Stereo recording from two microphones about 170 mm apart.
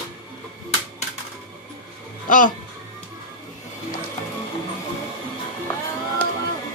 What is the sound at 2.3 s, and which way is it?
Speech, 50° left (ahead or behind).